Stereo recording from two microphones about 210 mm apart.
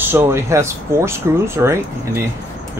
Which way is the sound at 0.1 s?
10° right (ahead or behind).